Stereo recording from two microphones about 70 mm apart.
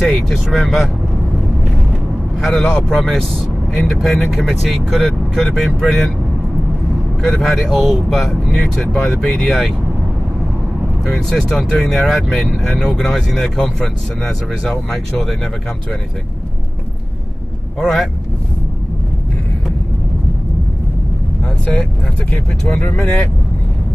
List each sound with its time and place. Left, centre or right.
0.0 s speech: centre
2.4 s speech: centre
7.2 s speech: centre
11.1 s speech: centre
17.7 s speech: centre
22.9 s speech: centre